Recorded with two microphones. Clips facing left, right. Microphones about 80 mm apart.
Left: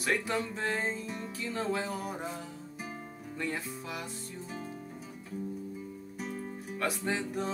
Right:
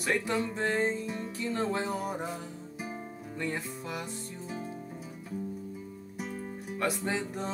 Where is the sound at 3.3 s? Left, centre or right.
Centre.